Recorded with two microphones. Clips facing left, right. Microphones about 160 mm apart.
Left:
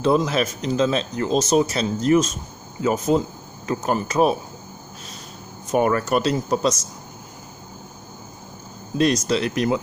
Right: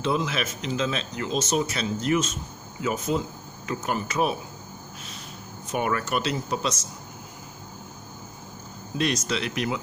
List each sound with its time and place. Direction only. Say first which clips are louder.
0.0 s speech: left 7 dB; 40° left (ahead or behind)
5.7 s speech: left 7 dB; 40° left (ahead or behind)
8.9 s speech: left 7 dB; 40° left (ahead or behind)